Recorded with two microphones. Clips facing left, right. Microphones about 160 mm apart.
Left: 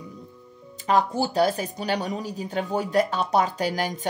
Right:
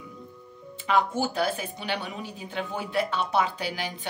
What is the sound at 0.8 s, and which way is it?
Speech, 35° left (ahead or behind).